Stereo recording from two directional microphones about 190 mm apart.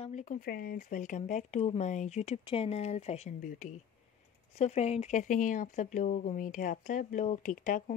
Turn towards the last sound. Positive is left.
turn(degrees=45)  # may be behind; listen again after turning